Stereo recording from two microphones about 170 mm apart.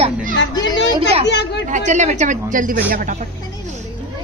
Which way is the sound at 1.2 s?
85° left.